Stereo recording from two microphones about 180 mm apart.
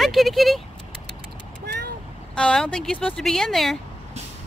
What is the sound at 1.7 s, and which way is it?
Vehicle, 65° right (ahead or behind).